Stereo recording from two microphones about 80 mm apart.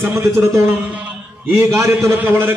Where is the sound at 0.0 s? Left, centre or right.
Right.